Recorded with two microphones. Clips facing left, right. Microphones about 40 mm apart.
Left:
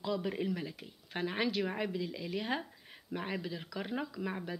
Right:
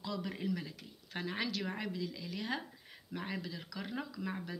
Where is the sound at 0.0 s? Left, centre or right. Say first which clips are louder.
Left 5 dB; left.